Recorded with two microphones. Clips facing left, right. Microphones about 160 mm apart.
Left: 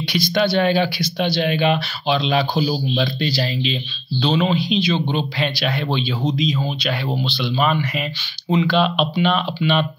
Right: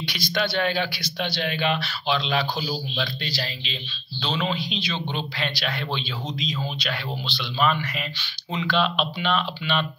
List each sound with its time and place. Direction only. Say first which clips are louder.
0.1 s speech: left 8 dB; 20° left (ahead or behind)
3.3 s speech: left 10 dB; 10° left (ahead or behind)
8.5 s speech: left 7 dB; 15° left (ahead or behind)